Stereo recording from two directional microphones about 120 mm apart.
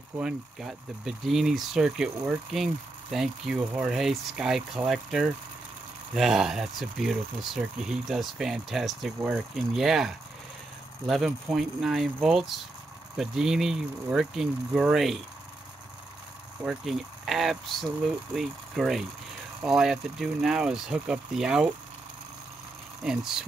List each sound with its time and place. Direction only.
0.2 s speech: 5° right (ahead or behind)
16.6 s speech: centre (ahead or behind)
23.0 s speech: 5° right (ahead or behind)